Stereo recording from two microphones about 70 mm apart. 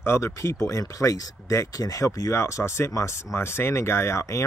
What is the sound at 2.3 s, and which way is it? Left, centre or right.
Speech, left.